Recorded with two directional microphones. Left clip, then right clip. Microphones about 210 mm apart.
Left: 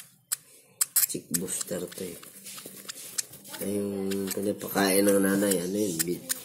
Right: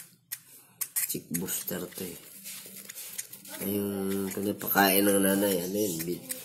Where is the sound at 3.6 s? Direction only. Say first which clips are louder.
Left 1 dB; 15° right (ahead or behind); by 6.0 s centre (ahead or behind).